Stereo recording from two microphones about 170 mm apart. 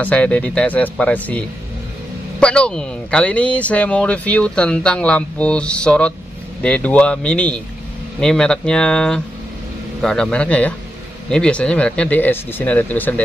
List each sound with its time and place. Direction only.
0.0 s speech: 5° left (ahead or behind)
2.4 s speech: 5° left (ahead or behind)